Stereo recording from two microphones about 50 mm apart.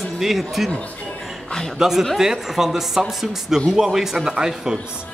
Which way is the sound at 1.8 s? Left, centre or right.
Centre.